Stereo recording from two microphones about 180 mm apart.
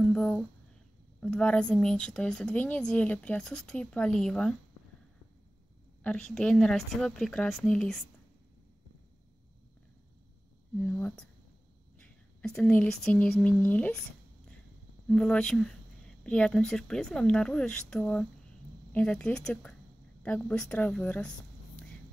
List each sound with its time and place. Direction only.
0.0 s a sound: 5° left (ahead or behind)
1.2 s speech: 5° left (ahead or behind)
6.0 s speech: 5° left (ahead or behind)
10.8 s speech: 5° left (ahead or behind)